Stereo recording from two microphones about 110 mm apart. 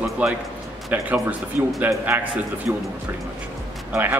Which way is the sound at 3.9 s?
15° right (ahead or behind).